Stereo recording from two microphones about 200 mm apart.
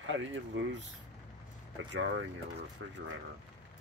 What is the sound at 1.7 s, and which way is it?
Speech, 65° right (ahead or behind).